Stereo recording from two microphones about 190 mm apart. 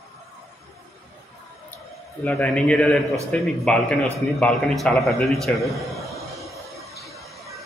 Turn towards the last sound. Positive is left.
turn(degrees=0)  # may be behind; listen again after turning